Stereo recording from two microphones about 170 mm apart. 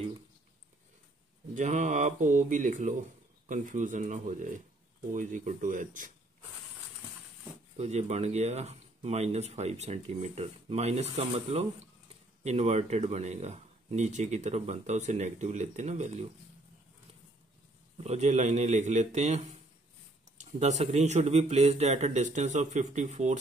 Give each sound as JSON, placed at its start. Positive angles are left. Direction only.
{"t": 1.5, "sound": "speech", "side_deg": -45}
{"t": 7.7, "sound": "speech", "side_deg": -40}
{"t": 18.0, "sound": "speech", "side_deg": -40}